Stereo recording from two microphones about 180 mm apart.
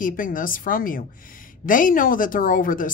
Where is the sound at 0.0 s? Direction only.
50° left (ahead or behind).